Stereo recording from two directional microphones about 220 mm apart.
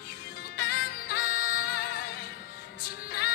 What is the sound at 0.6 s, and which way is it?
Music, 45° left (ahead or behind).